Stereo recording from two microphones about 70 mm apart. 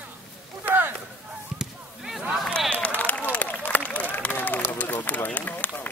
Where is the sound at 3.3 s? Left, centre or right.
Left.